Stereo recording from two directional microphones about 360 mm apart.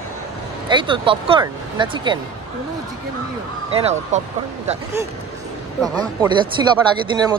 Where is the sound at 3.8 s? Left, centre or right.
Centre.